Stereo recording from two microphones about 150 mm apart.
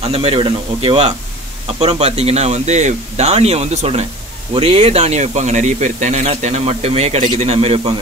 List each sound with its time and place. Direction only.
0.0 s speech: 40° right (ahead or behind)